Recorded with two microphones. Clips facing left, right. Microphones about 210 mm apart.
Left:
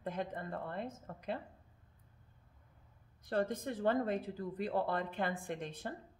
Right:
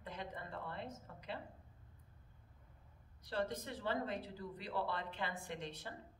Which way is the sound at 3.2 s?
50° left (ahead or behind).